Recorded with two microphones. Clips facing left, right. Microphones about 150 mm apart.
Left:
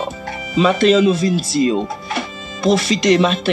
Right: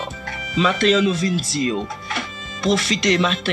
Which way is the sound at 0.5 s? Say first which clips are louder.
Left 5 dB; 40° left (ahead or behind).